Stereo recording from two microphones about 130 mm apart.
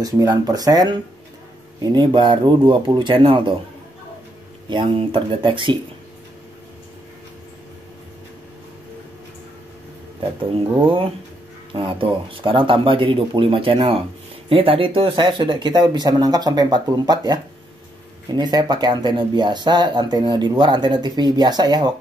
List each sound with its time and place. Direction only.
0.0 s speech: 30° right (ahead or behind)
4.6 s speech: 40° right (ahead or behind)
10.8 s speech: 40° right (ahead or behind)